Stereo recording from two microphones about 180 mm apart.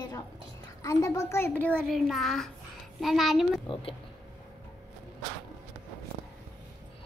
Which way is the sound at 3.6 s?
30° left (ahead or behind).